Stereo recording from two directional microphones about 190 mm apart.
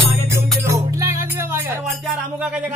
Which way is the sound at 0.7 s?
15° right (ahead or behind).